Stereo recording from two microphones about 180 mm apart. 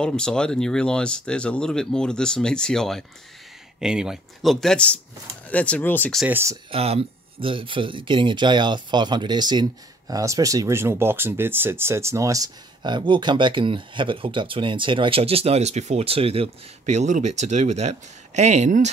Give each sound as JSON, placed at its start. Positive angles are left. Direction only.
{"t": 0.0, "sound": "speech", "side_deg": 5}
{"t": 6.2, "sound": "speech", "side_deg": -15}
{"t": 6.7, "sound": "speech", "side_deg": -35}